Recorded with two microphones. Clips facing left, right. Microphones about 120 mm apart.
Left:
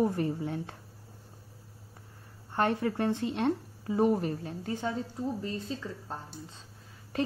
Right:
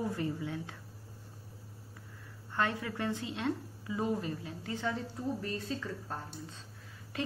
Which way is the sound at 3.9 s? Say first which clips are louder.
Left 7 dB; 25° left (ahead or behind).